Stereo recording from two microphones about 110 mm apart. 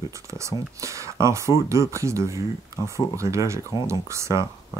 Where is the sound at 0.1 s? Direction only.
30° right (ahead or behind).